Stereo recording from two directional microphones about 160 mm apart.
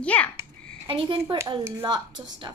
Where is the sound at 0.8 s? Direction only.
30° right (ahead or behind).